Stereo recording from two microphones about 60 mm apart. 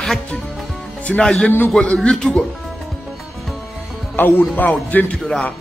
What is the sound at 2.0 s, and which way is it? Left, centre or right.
Speech, centre.